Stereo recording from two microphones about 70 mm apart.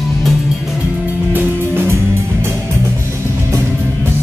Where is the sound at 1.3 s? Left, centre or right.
Right.